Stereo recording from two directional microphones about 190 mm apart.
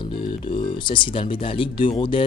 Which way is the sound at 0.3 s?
25° left (ahead or behind).